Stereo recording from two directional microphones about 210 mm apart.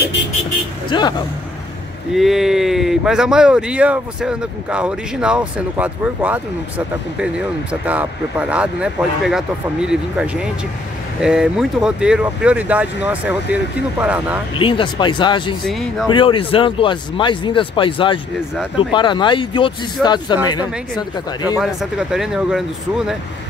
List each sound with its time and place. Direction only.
0.8 s speech: 20° left (ahead or behind)
2.1 s speech: centre (ahead or behind)
14.6 s speech: 25° left (ahead or behind)
15.6 s speech: centre (ahead or behind)
16.1 s speech: 25° left (ahead or behind)
21.5 s speech: 5° right (ahead or behind)